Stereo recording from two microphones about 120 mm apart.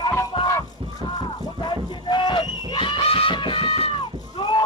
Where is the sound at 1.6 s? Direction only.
40° left (ahead or behind).